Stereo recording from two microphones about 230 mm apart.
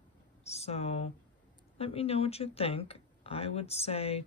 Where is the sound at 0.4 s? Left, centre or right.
Left.